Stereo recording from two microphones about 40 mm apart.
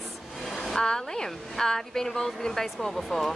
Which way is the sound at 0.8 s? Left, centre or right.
Centre.